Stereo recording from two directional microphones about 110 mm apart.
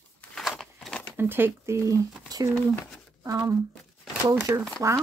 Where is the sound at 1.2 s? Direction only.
20° right (ahead or behind); by 3.5 s 35° right (ahead or behind).